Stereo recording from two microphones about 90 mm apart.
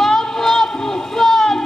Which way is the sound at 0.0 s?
5° left (ahead or behind).